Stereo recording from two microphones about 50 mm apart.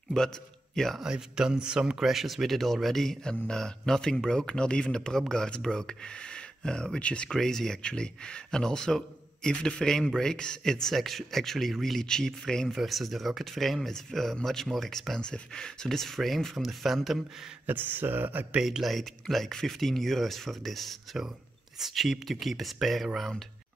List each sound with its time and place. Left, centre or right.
0.1 s a man's voice: centre
0.9 s speech: centre
2.0 s speech: centre; by 7.2 s left
7.2 s speech: centre
12.6 s speech: centre
17.6 s speech: right
18.6 s speech: centre